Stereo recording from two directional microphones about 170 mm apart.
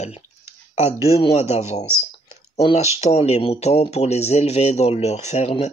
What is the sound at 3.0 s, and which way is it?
Speech, 40° left (ahead or behind).